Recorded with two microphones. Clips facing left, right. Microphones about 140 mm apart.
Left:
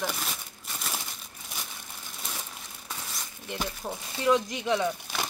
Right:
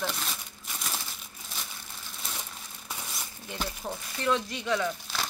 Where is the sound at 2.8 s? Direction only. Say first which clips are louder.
Even; 10° right (ahead or behind).